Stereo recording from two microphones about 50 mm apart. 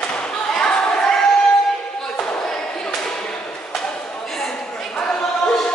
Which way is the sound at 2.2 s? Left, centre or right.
Centre.